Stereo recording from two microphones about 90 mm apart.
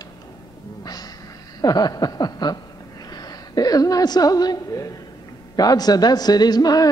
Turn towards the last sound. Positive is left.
turn(degrees=45)  # may be behind; listen again after turning